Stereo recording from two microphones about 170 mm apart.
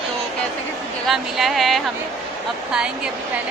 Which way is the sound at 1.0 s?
Centre (ahead or behind).